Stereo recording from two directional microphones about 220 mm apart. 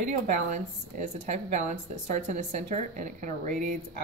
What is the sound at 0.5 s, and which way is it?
A woman's voice, 30° right (ahead or behind).